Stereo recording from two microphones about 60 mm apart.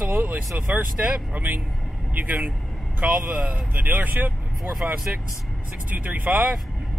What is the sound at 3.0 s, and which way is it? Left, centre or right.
Speech, centre.